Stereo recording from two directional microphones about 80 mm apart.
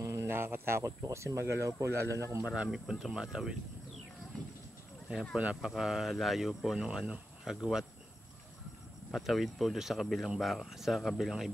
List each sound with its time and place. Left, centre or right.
0.0 s a sound: right
1.0 s speech: right
2.5 s speech: centre
5.3 s speech: centre
9.1 s speech: centre